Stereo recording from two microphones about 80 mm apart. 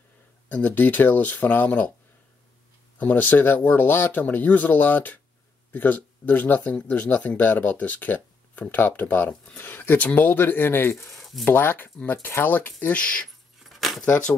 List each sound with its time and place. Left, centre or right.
0.5 s speech: centre
3.0 s speech: centre
11.1 s a sound: centre
11.4 s speech: left
13.7 s keys jangling: centre